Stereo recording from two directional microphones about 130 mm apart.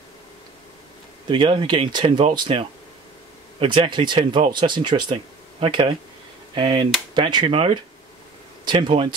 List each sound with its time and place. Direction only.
1.3 s speech: 40° right (ahead or behind)